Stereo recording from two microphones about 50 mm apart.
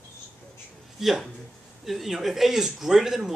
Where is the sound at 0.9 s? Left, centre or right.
Centre.